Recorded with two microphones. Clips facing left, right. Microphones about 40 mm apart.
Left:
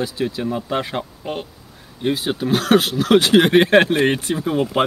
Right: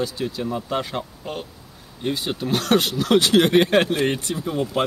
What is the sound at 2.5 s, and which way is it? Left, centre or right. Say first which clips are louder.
Speech: left 4 dB; centre.